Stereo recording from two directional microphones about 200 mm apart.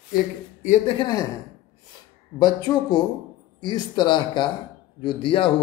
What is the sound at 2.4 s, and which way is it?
A man's voice, 20° left (ahead or behind).